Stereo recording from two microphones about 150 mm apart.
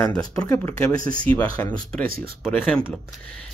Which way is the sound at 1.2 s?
10° left (ahead or behind).